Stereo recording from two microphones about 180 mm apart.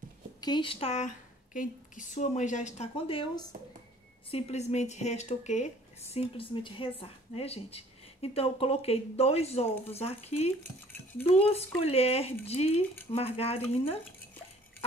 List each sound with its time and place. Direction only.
0.4 s speech: 25° left (ahead or behind)